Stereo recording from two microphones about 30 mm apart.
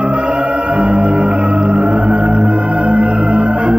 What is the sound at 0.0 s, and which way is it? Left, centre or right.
Music, right.